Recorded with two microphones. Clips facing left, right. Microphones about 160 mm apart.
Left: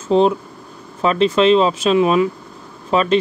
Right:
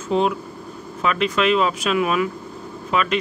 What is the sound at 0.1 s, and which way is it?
Speech, 30° left (ahead or behind).